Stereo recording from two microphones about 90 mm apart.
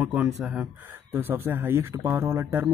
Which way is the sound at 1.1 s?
25° right (ahead or behind).